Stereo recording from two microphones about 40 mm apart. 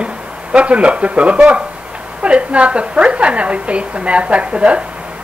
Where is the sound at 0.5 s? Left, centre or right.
Right.